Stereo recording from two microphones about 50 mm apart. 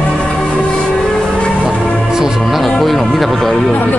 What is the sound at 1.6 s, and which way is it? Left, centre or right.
Music, centre.